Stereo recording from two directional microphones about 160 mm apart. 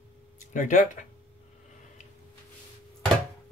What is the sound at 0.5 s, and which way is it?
Speech, 50° left (ahead or behind).